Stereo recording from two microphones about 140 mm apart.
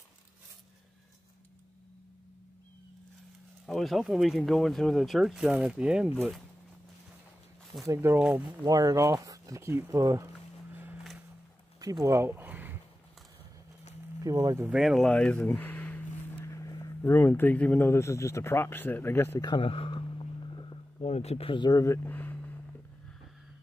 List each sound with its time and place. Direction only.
3.6 s speech: centre (ahead or behind)
7.8 s speech: 20° right (ahead or behind)
8.2 s speech: 5° right (ahead or behind)
8.6 s speech: 25° right (ahead or behind)
11.8 s a sound: 25° right (ahead or behind)
14.2 s speech: 20° right (ahead or behind)
14.7 s a sound: centre (ahead or behind)
16.5 s speech: 20° left (ahead or behind)
19.4 s a sound: 35° left (ahead or behind)
21.0 s speech: 50° left (ahead or behind); by 22.3 s 15° left (ahead or behind)